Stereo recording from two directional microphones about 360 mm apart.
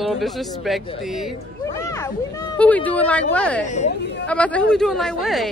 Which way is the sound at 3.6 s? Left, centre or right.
Centre.